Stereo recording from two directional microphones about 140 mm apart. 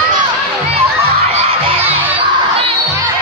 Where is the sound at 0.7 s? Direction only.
45° right (ahead or behind).